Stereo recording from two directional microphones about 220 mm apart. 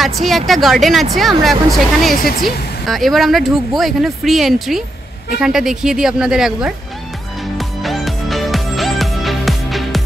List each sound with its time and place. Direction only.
0.0 s speech: centre (ahead or behind)
2.1 s speech: 40° left (ahead or behind)
2.4 s speech: centre (ahead or behind)
7.5 s music: centre (ahead or behind)